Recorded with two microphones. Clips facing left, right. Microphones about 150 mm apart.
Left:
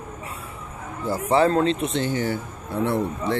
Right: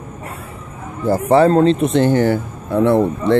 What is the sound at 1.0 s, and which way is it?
Speech, 45° right (ahead or behind).